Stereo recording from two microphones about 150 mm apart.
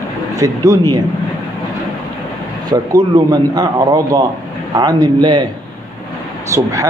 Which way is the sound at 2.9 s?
25° right (ahead or behind).